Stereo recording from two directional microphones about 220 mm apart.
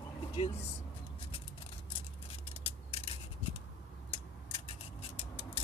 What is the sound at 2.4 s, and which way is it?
Scissors, 25° left (ahead or behind).